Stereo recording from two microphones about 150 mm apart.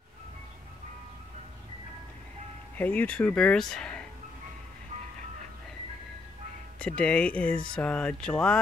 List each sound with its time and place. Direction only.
2.8 s speech: 10° left (ahead or behind)
6.8 s speech: 5° left (ahead or behind)